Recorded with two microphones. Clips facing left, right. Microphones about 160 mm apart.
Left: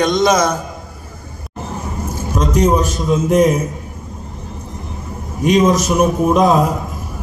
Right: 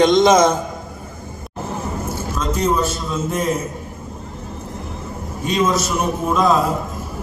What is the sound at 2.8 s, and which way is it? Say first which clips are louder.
Speech: left 5 dB; 15° left (ahead or behind).